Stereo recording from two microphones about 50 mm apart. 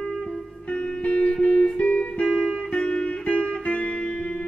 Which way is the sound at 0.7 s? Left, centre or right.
Left.